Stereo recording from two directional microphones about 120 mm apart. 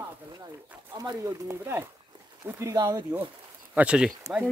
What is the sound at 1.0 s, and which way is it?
Speech, 30° right (ahead or behind).